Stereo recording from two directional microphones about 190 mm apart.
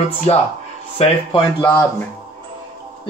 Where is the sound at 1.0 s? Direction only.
30° left (ahead or behind).